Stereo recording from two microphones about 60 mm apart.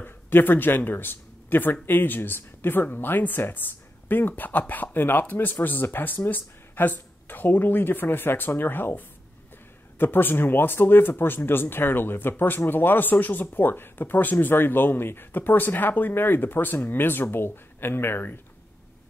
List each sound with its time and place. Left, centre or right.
0.0 s speech: left